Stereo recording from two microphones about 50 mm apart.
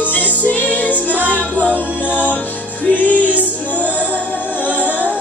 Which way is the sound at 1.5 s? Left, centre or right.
Right.